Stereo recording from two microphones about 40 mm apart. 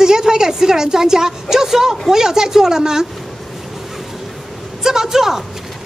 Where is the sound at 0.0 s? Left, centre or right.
Centre.